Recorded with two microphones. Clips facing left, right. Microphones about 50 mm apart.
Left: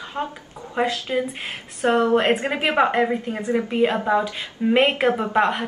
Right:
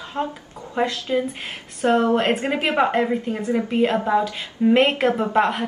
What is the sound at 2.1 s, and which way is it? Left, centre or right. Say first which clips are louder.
Speech: left 1 dB; centre.